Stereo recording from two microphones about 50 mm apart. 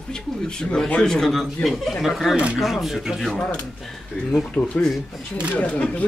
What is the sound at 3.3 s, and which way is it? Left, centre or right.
Speech, centre.